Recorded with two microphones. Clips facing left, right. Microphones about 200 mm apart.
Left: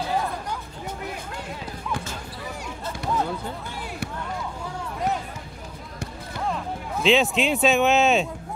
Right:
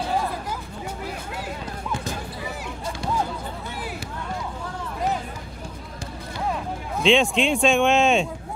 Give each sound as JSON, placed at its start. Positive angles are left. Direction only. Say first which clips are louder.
{"t": 6.5, "sound": "speech", "louder": "right 1 dB", "side_deg": 0}